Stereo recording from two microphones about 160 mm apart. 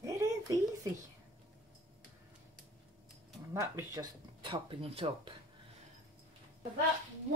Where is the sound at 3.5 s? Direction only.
20° right (ahead or behind).